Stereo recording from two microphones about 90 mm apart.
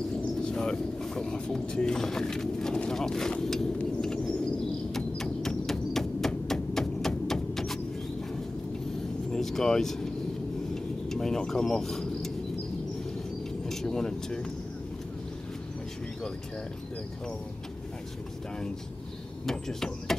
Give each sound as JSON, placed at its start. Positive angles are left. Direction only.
{"t": 0.4, "sound": "speech", "side_deg": 10}
{"t": 4.9, "sound": "a sound", "side_deg": 5}
{"t": 9.3, "sound": "speech", "side_deg": 5}
{"t": 10.7, "sound": "a sound", "side_deg": 5}
{"t": 13.7, "sound": "speech", "side_deg": 5}
{"t": 19.4, "sound": "speech", "side_deg": 5}